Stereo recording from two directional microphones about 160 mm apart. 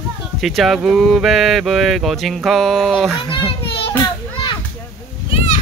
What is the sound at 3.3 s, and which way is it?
Children playing, 35° left (ahead or behind).